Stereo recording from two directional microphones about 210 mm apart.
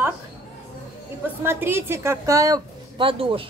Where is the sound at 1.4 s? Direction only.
10° right (ahead or behind).